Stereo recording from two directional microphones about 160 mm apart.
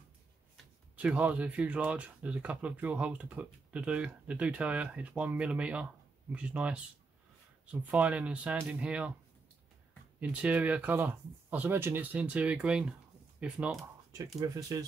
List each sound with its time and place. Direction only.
0.9 s speech: 10° right (ahead or behind)
10.3 s speech: 10° right (ahead or behind)
14.4 s speech: 20° right (ahead or behind)